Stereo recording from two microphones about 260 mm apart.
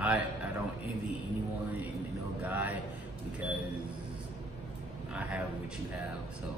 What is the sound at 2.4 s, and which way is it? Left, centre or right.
Speech, centre.